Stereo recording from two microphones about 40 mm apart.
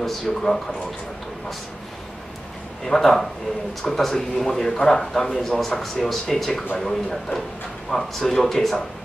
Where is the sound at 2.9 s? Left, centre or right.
Centre.